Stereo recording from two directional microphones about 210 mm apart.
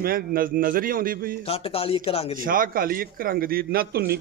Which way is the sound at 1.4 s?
25° left (ahead or behind).